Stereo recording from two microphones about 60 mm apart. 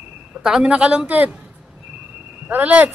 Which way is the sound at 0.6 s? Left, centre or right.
Right.